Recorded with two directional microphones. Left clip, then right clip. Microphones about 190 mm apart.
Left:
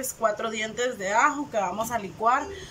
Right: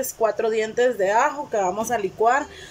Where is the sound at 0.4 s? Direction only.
30° right (ahead or behind).